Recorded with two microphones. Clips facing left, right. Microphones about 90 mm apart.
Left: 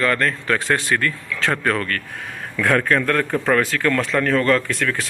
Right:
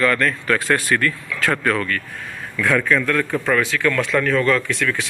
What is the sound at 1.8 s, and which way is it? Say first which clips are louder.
Speech: right 1 dB; 50° left (ahead or behind).